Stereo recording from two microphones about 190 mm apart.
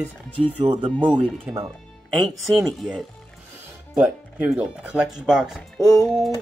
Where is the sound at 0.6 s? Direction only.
25° right (ahead or behind).